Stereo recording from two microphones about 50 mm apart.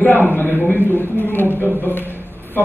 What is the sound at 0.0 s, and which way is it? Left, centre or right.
A man's voice, left.